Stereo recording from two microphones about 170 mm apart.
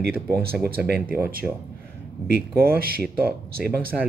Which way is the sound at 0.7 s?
65° right (ahead or behind).